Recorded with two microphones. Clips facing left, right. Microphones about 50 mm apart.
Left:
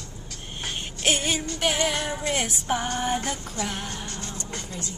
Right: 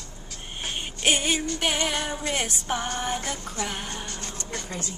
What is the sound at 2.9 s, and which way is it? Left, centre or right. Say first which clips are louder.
Music: left 3 dB; centre.